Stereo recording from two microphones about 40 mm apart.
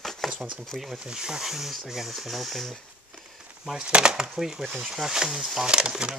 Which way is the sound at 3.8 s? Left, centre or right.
Right.